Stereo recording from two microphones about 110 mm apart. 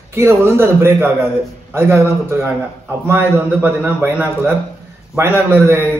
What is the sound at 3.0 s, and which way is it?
A man's voice, 20° right (ahead or behind).